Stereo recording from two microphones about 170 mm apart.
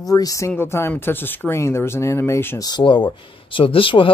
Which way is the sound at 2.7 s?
25° left (ahead or behind).